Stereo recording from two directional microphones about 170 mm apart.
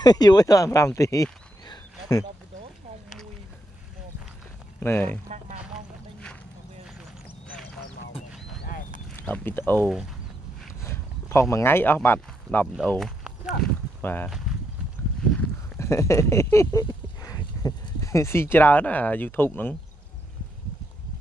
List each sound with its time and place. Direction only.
0.0 s speech: 25° left (ahead or behind)
4.7 s speech: 10° left (ahead or behind)
7.2 s duck: 10° left (ahead or behind)
8.6 s a sound: 55° left (ahead or behind)
9.2 s speech: 10° left (ahead or behind)
9.8 s speech: 5° right (ahead or behind)
10.8 s speech: 15° left (ahead or behind)
15.8 s speech: 15° left (ahead or behind)